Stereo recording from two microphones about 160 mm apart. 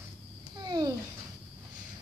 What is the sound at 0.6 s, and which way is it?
Babbling, 25° right (ahead or behind).